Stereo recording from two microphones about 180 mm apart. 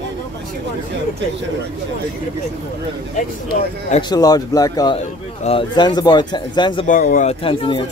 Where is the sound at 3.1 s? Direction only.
45° left (ahead or behind).